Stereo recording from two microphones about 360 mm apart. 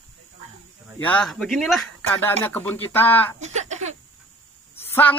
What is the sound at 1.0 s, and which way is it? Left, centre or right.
Speech, centre.